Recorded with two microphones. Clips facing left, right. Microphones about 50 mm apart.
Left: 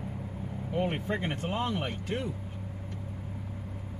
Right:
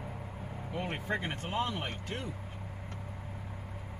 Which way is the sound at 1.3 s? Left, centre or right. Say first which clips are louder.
Left 3 dB; left.